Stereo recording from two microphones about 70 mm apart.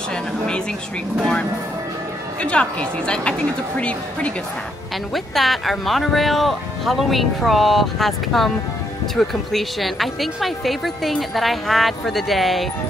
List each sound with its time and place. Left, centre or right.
2.4 s a woman's voice: centre
5.1 s speech: centre